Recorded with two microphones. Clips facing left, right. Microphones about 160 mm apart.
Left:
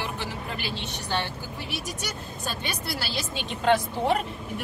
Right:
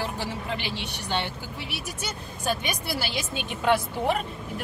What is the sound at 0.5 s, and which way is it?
Speech, 15° right (ahead or behind).